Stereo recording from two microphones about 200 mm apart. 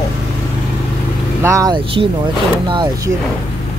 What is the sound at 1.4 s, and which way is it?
Speech, 15° right (ahead or behind).